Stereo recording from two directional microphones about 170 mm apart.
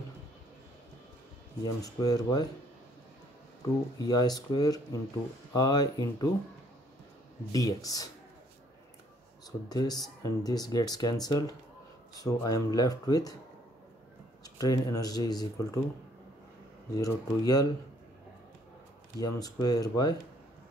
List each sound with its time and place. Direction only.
1.6 s speech: 20° left (ahead or behind)
4.0 s speech: 25° left (ahead or behind)
7.5 s speech: 20° left (ahead or behind)
9.7 s speech: 25° left (ahead or behind)
14.4 s speech: 20° left (ahead or behind)
16.9 s speech: 20° left (ahead or behind)
19.1 s speech: 20° left (ahead or behind)